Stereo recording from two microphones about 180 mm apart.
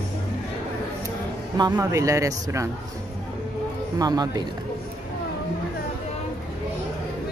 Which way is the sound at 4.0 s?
20° right (ahead or behind).